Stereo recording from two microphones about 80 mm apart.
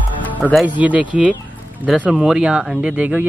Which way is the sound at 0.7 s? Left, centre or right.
Centre.